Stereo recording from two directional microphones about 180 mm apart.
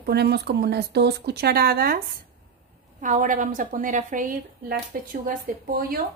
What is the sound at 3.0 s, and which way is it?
Speech, 45° right (ahead or behind).